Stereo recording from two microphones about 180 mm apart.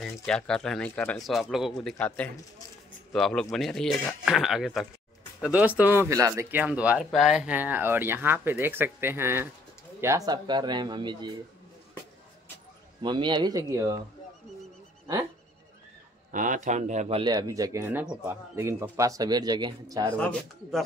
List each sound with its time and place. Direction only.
0.0 s a man's voice: 5° left (ahead or behind); by 11.3 s 25° right (ahead or behind)
13.0 s a man's voice: 25° right (ahead or behind)
16.3 s a man's voice: 45° right (ahead or behind)
17.2 s a man's voice: 20° right (ahead or behind)
20.2 s speech: 5° left (ahead or behind)